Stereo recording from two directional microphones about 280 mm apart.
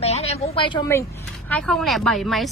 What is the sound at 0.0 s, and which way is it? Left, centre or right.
A woman's voice, left.